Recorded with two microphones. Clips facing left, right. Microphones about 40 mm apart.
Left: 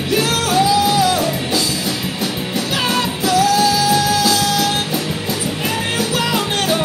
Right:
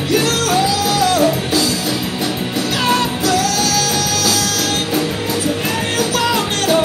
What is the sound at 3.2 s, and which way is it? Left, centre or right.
Music, left.